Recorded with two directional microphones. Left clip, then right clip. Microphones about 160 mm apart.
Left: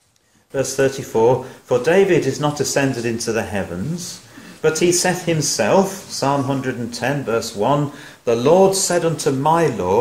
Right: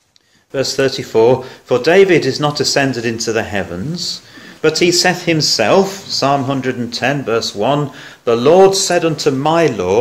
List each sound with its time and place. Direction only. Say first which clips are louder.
0.6 s a man's voice: right 3 dB; 30° right (ahead or behind)